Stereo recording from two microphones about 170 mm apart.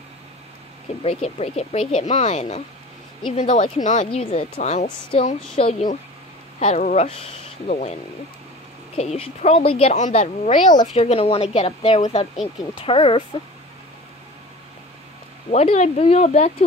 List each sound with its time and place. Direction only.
1.0 s speech: 40° left (ahead or behind)
15.5 s speech: 40° left (ahead or behind)